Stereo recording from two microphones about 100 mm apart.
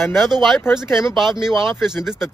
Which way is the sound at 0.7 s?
5° right (ahead or behind).